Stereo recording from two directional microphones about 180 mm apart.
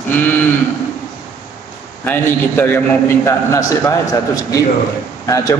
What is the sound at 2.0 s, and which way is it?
A man's voice, 10° left (ahead or behind).